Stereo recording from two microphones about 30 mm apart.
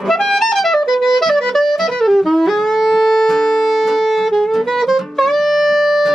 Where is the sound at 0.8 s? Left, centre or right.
Centre.